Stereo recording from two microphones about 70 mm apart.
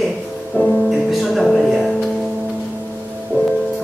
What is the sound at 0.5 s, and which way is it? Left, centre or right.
Music, centre.